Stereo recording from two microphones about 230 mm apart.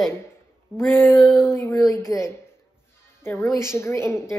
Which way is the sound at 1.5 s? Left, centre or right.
Centre.